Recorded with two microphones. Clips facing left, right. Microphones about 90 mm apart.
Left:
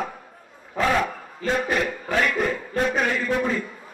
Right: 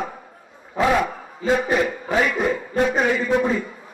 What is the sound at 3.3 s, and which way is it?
Speech, 20° right (ahead or behind).